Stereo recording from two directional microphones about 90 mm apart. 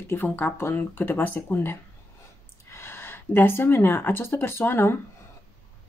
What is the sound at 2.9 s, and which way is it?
Speech, 25° left (ahead or behind).